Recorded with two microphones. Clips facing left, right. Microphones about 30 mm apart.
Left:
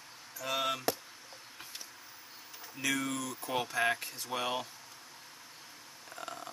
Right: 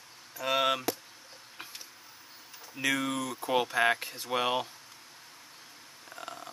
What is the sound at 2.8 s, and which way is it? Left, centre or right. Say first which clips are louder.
Speech: right 4 dB; right.